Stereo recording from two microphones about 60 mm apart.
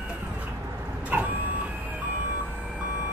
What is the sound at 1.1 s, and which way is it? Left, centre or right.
Vehicle, right.